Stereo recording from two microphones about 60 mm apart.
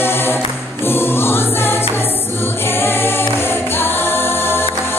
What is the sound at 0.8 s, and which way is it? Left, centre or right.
Choir, left.